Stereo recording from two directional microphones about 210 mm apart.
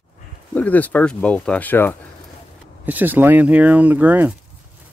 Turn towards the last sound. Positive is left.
turn(degrees=-10)  # may be behind; listen again after turning